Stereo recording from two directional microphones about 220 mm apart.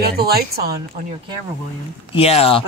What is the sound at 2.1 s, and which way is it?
Speech, 25° left (ahead or behind).